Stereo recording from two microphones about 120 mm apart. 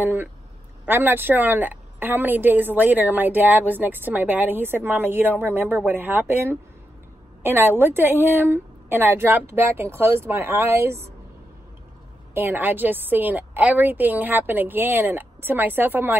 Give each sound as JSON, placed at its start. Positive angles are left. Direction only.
{"t": 0.0, "sound": "a woman's voice", "side_deg": -15}
{"t": 12.4, "sound": "a woman's voice", "side_deg": -15}